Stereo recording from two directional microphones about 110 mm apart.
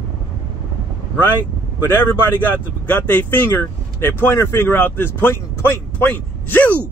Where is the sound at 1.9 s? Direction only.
20° left (ahead or behind).